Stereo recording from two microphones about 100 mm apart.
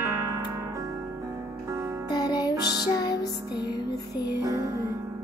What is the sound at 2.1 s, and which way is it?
Music, 40° left (ahead or behind).